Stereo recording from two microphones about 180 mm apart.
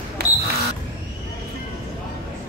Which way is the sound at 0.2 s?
65° right (ahead or behind).